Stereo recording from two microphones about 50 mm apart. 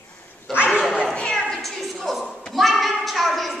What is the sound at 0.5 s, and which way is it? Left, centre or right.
Speech, right.